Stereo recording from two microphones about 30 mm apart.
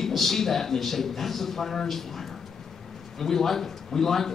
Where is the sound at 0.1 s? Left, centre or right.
Centre.